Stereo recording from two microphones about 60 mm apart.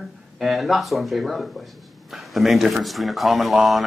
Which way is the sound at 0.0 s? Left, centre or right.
Centre.